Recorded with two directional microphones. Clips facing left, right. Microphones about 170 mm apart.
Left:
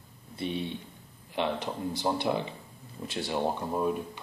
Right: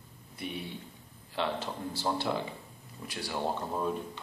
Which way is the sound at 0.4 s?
25° left (ahead or behind).